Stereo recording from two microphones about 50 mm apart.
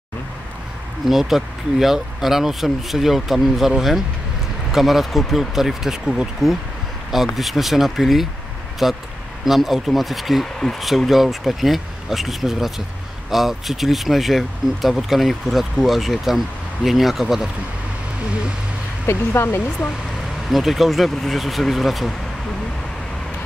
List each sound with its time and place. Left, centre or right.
1.0 s speech: centre
4.7 s speech: centre
19.0 s speech: left
20.4 s speech: centre